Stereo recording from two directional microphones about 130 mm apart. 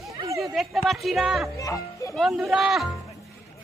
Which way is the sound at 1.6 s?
25° left (ahead or behind).